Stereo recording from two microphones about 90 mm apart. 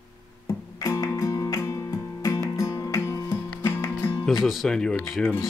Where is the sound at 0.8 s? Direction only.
40° left (ahead or behind).